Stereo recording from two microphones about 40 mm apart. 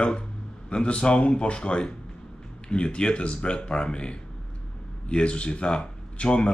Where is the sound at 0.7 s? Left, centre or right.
Left.